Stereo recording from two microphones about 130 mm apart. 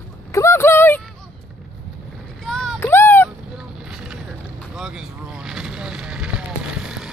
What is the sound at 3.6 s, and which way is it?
Vehicle, 5° right (ahead or behind).